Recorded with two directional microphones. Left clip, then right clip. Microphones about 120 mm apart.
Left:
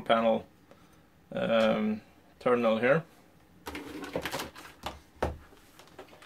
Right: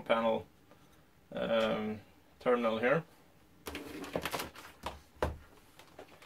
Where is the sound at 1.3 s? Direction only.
55° left (ahead or behind).